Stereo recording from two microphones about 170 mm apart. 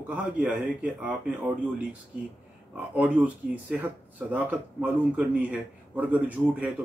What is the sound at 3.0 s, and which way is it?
Speech, 10° right (ahead or behind).